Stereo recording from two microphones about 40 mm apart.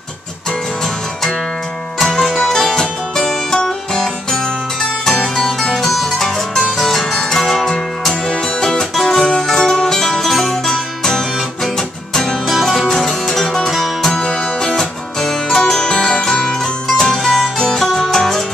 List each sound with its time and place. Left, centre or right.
2.0 s music: centre; by 16.3 s left
16.3 s music: centre